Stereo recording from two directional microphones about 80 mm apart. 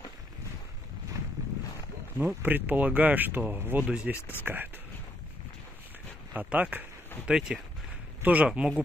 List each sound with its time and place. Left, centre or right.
2.1 s speech: right
6.3 s speech: centre
7.2 s speech: centre
8.2 s speech: centre
8.5 s speech: centre